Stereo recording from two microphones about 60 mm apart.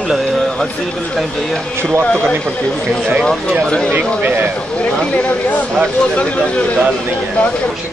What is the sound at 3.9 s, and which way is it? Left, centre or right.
Speech, right.